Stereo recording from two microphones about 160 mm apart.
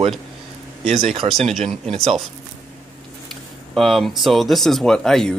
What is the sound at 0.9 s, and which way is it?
Speech, 35° right (ahead or behind).